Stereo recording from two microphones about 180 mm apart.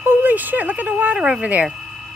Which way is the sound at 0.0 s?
10° right (ahead or behind).